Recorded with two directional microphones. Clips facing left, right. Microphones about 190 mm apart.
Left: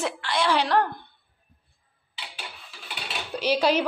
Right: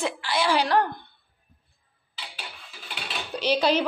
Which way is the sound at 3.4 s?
10° left (ahead or behind).